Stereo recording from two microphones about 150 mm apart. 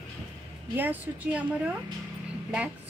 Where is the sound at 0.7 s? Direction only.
10° right (ahead or behind).